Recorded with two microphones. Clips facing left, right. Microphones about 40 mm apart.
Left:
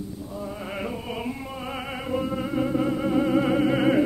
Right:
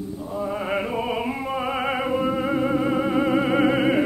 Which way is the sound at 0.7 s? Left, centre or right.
Centre.